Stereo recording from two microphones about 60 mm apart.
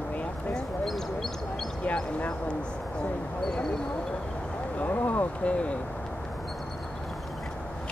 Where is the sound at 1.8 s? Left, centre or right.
Left.